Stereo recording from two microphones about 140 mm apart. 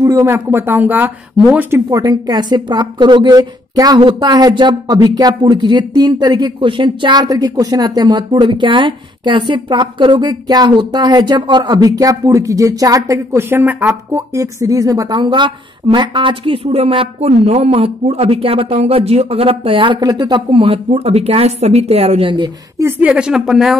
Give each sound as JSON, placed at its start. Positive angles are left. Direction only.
{"t": 0.0, "sound": "speech", "side_deg": -20}
{"t": 1.9, "sound": "a woman's voice", "side_deg": -25}
{"t": 14.1, "sound": "a woman's voice", "side_deg": -25}
{"t": 22.3, "sound": "a woman's voice", "side_deg": -30}
{"t": 22.8, "sound": "speech", "side_deg": -10}